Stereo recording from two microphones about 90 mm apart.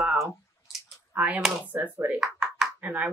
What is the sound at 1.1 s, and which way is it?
Speech, 20° right (ahead or behind).